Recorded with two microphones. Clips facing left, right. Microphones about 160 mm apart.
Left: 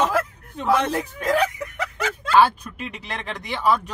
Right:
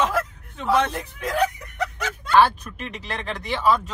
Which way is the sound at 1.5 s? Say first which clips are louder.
Left 11 dB; 90° left.